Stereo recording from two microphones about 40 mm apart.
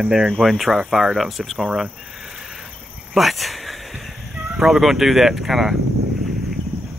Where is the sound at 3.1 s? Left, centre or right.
Centre.